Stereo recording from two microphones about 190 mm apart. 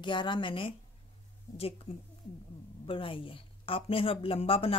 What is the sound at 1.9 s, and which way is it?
A woman's voice, 30° left (ahead or behind).